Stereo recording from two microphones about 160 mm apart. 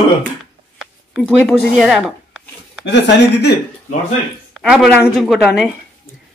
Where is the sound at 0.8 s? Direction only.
5° right (ahead or behind).